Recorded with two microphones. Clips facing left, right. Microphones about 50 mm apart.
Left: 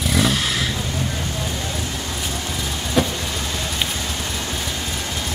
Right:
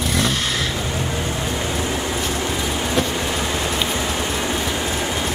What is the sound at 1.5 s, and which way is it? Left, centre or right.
Rain, right.